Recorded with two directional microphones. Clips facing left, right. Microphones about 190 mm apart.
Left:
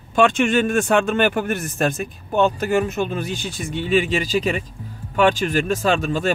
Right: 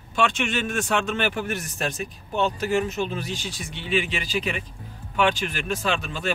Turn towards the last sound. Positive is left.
turn(degrees=45)  # may be behind; listen again after turning